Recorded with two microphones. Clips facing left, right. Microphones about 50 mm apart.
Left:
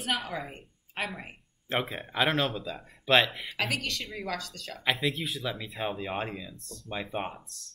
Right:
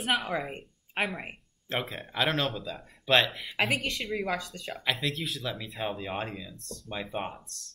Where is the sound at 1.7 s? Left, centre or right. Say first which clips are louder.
Left 2 dB; centre.